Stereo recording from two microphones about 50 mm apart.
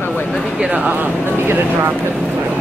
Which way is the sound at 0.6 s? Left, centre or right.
Right.